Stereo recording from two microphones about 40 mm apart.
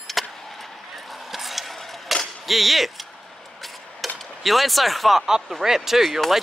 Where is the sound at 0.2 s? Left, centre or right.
Centre.